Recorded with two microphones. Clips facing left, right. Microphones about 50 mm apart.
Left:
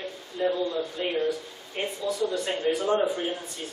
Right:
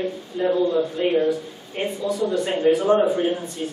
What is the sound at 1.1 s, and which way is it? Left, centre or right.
Speech, centre.